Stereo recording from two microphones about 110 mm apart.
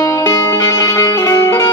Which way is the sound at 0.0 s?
30° left (ahead or behind).